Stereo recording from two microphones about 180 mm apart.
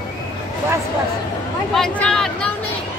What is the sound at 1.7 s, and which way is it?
Speech, 5° left (ahead or behind).